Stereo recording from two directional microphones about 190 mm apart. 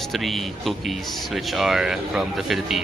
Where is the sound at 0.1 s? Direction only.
Centre (ahead or behind).